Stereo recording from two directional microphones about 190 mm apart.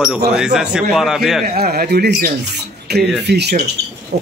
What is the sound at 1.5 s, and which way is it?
Speech, 55° right (ahead or behind).